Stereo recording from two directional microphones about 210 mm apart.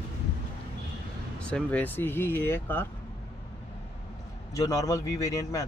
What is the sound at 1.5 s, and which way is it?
Speech, 5° left (ahead or behind).